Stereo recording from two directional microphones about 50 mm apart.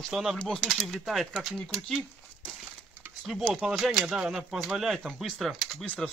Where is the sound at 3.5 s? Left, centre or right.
Centre.